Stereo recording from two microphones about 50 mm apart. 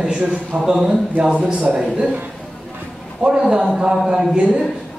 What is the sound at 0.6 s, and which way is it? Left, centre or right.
A man's voice, centre.